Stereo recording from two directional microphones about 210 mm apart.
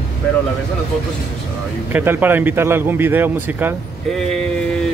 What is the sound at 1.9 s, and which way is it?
A man's voice, 10° right (ahead or behind).